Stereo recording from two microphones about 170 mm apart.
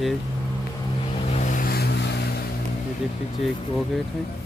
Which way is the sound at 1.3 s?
45° left (ahead or behind).